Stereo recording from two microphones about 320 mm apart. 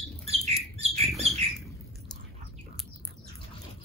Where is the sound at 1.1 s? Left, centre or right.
Centre.